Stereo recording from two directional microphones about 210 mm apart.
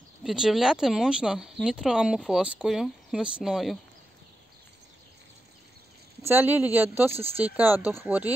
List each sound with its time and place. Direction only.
0.2 s speech: centre (ahead or behind)
6.2 s speech: 10° right (ahead or behind)